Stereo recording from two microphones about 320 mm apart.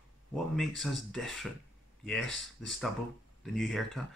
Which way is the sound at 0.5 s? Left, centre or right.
Centre.